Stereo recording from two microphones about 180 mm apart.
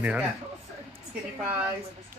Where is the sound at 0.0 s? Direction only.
10° right (ahead or behind).